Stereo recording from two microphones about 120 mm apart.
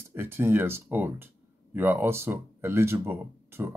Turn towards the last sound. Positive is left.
turn(degrees=-20)  # may be behind; listen again after turning